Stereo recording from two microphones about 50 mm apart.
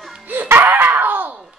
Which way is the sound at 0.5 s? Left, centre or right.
Right.